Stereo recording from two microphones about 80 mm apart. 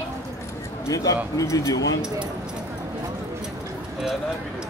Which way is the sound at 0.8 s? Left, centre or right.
Left.